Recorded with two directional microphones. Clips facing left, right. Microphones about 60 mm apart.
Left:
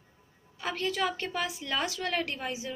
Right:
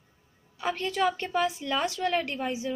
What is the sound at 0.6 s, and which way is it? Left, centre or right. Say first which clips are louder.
A woman's voice: right 3 dB; centre.